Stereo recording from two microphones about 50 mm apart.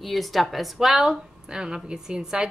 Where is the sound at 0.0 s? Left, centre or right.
Centre.